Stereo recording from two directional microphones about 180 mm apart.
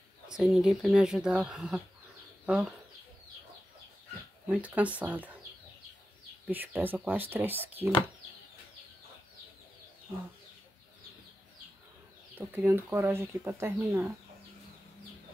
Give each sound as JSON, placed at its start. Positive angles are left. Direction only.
{"t": 0.3, "sound": "speech", "side_deg": 0}
{"t": 4.5, "sound": "speech", "side_deg": -10}
{"t": 6.4, "sound": "speech", "side_deg": -10}
{"t": 12.4, "sound": "speech", "side_deg": -10}